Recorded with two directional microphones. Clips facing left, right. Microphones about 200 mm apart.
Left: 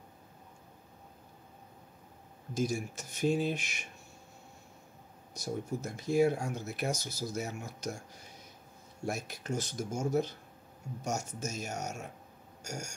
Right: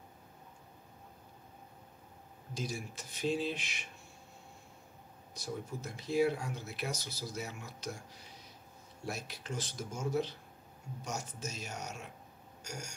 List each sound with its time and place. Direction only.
2.5 s speech: 45° left (ahead or behind)
5.3 s speech: 45° left (ahead or behind)